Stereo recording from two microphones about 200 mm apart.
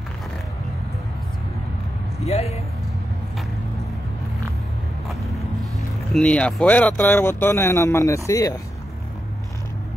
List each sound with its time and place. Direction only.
2.1 s speech: 30° left (ahead or behind)
6.1 s speech: 5° left (ahead or behind)